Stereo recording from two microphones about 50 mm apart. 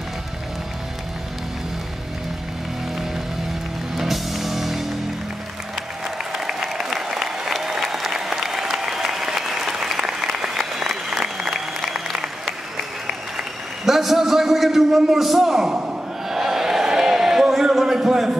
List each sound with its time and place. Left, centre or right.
3.9 s music: centre
6.3 s applause: centre
13.8 s a sound: centre